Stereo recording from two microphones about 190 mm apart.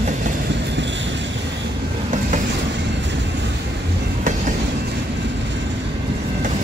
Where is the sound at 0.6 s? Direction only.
65° right (ahead or behind).